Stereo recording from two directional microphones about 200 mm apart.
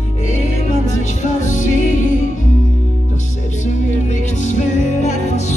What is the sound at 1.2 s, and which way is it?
Music, 40° left (ahead or behind).